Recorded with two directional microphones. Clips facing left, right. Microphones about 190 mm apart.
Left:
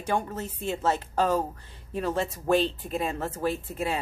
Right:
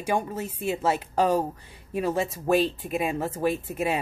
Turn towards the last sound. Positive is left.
turn(degrees=-15)  # may be behind; listen again after turning